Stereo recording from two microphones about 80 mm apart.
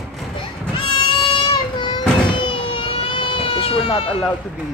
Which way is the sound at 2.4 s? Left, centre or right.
Left.